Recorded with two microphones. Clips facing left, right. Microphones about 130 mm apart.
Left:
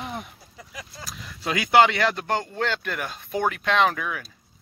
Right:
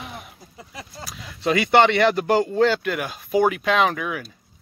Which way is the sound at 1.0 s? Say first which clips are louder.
Right 7 dB; centre (ahead or behind).